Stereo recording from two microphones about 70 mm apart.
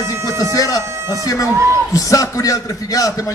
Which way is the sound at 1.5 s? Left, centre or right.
Right.